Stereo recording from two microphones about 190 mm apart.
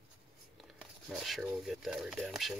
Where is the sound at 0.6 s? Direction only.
Centre (ahead or behind).